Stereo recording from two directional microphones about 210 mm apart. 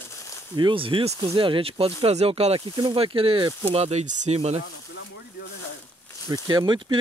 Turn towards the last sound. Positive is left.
turn(degrees=-20)  # may be behind; listen again after turning